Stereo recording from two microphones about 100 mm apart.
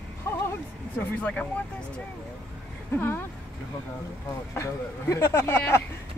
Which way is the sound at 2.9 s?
25° left (ahead or behind).